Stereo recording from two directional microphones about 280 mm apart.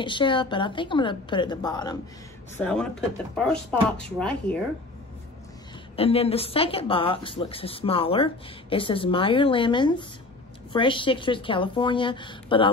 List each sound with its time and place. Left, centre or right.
0.0 s a woman's voice: centre
2.5 s speech: centre
4.0 s speech: centre
5.9 s a woman's voice: left